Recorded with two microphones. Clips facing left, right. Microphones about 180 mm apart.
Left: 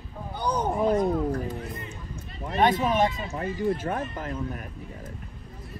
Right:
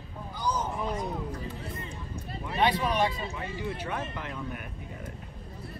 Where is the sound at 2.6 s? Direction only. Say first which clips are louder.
Left 4 dB; 45° left (ahead or behind).